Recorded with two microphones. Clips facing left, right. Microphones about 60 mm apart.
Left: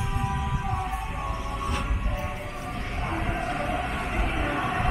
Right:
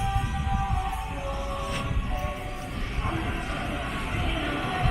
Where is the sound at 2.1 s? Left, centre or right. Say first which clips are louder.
Even; centre.